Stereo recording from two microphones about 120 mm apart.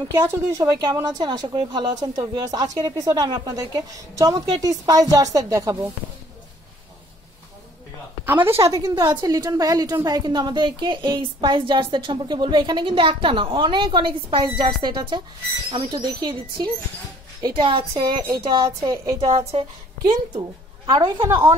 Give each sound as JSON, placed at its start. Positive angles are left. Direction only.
{"t": 0.1, "sound": "a woman's voice", "side_deg": -20}
{"t": 8.3, "sound": "a woman's voice", "side_deg": -15}
{"t": 8.6, "sound": "a woman's voice", "side_deg": -25}
{"t": 19.1, "sound": "a woman's voice", "side_deg": -55}